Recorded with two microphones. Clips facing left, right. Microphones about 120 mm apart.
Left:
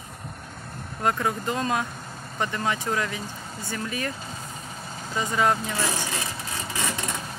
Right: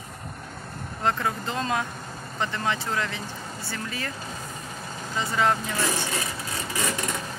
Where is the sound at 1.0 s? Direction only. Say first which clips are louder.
Left 1 dB; 15° left (ahead or behind).